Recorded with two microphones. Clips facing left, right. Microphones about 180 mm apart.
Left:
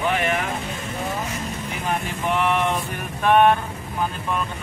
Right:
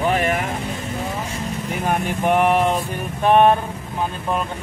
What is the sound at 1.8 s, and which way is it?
Speech, 50° right (ahead or behind).